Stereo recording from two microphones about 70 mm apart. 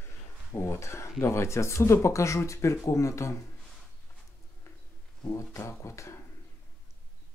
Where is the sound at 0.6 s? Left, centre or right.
Left.